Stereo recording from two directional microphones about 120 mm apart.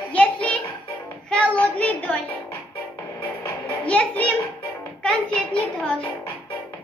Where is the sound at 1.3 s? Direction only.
10° left (ahead or behind).